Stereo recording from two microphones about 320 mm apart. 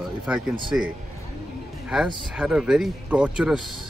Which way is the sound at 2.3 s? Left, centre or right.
Centre.